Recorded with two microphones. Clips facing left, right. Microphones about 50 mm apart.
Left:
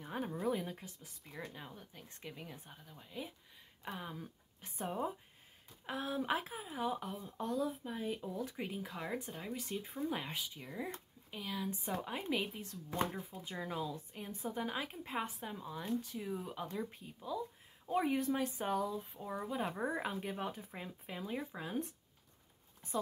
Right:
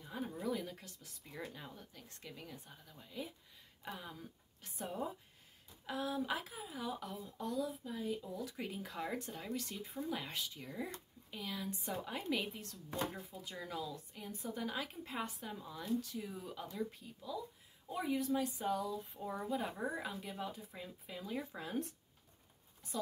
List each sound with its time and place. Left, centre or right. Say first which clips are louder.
0.0 s a sound: left 3 dB; left
0.3 s a sound: left 3 dB; left
0.7 s a woman's voice: left 3 dB; centre
7.2 s speech: left 3 dB; left
8.7 s a woman's voice: right 1 dB; centre; by 10.3 s left
10.3 s speech: left 1 dB; centre
12.0 s speech: even; centre
13.3 s a woman's voice: left 3 dB; left
19.1 s speech: even; centre
19.4 s a woman's voice: left 2 dB; centre
20.0 s speech: left 4 dB; left
21.4 s a woman's voice: right 1 dB; centre